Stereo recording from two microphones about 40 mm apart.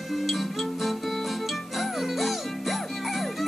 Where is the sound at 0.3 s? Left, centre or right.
Centre.